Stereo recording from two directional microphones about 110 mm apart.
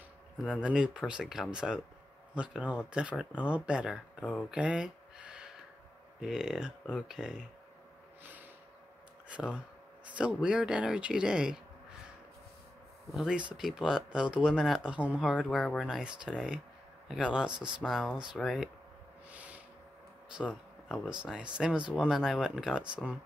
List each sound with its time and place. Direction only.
0.4 s speech: 5° right (ahead or behind)
4.6 s a sound: 10° right (ahead or behind)
6.2 s speech: 5° right (ahead or behind)
8.2 s snort: 15° right (ahead or behind)
9.3 s speech: 10° right (ahead or behind)
13.1 s speech: 5° right (ahead or behind)
15.5 s speech: 5° left (ahead or behind)
15.9 s speech: 10° right (ahead or behind)
19.3 s a sound: 15° right (ahead or behind)
20.3 s speech: 5° right (ahead or behind)